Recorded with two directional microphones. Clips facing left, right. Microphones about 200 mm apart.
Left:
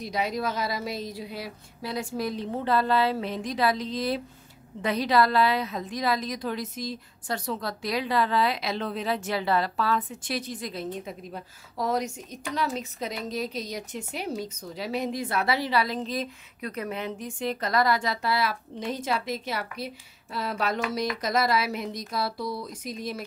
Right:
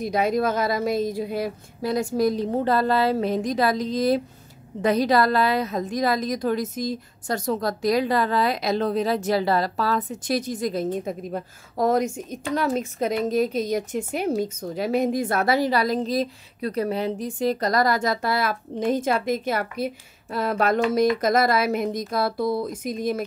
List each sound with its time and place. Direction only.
0.0 s a woman's voice: 50° right (ahead or behind)